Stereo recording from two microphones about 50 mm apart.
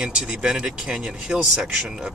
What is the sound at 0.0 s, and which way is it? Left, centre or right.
Speech, centre.